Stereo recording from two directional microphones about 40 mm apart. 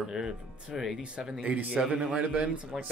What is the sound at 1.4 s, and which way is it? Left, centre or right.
Speech, right.